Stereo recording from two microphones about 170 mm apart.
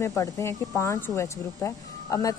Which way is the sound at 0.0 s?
20° left (ahead or behind).